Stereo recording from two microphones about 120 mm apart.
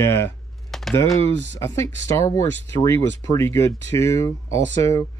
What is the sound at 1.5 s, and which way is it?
Speech, 25° left (ahead or behind).